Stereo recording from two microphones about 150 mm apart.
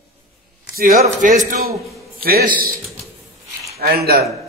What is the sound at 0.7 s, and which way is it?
Speech, 75° right (ahead or behind).